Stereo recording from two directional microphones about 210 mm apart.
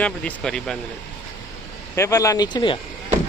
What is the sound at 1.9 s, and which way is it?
Speech, 15° left (ahead or behind).